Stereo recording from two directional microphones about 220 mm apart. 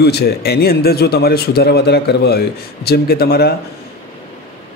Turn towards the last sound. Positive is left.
turn(degrees=45)  # may be behind; listen again after turning